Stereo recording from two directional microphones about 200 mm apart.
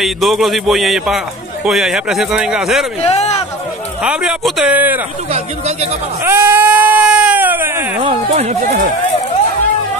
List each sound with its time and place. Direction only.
0.0 s a man's voice: centre (ahead or behind)
3.0 s a man's voice: 30° left (ahead or behind)
4.0 s a man's voice: 5° right (ahead or behind)
5.3 s speech: 30° right (ahead or behind)
6.2 s sheep: 10° right (ahead or behind)
8.0 s speech: 30° right (ahead or behind)